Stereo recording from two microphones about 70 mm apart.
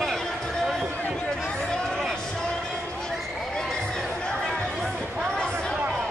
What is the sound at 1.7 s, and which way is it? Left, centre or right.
Run, centre.